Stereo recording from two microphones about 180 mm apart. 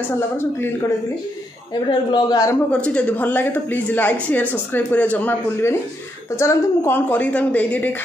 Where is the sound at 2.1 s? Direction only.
20° left (ahead or behind).